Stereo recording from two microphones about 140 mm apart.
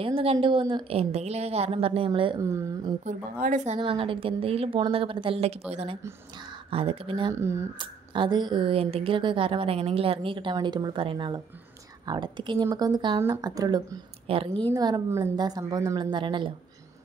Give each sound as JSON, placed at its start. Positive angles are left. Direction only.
{"t": 0.0, "sound": "speech", "side_deg": -40}
{"t": 3.1, "sound": "a woman's voice", "side_deg": -70}
{"t": 3.8, "sound": "speech", "side_deg": -40}
{"t": 7.3, "sound": "speech", "side_deg": -20}
{"t": 7.8, "sound": "speech", "side_deg": -35}
{"t": 14.2, "sound": "a woman's voice", "side_deg": -40}
{"t": 14.7, "sound": "speech", "side_deg": -25}